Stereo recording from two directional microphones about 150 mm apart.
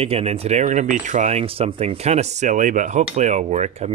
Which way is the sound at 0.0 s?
40° right (ahead or behind).